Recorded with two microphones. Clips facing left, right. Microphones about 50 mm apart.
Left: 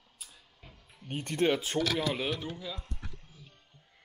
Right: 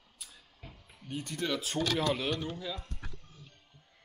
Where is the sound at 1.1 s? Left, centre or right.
Left.